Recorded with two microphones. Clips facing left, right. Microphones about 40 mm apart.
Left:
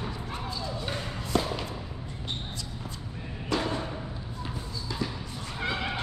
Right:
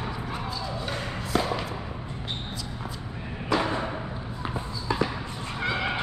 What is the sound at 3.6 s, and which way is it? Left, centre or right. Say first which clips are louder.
Music: right 3 dB; right.